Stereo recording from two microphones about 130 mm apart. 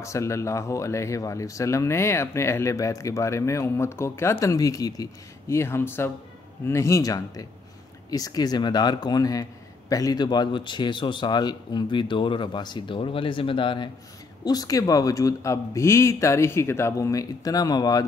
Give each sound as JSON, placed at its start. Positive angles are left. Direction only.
{"t": 0.0, "sound": "a man's voice", "side_deg": 20}
{"t": 14.4, "sound": "speech", "side_deg": 30}